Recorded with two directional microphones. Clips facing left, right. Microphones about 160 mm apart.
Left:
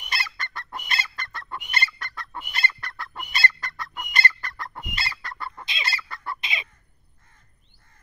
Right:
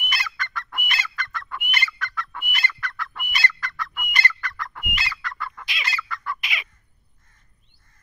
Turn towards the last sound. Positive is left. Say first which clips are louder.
# right 1 dB
turn(degrees=25)  # may be behind; listen again after turning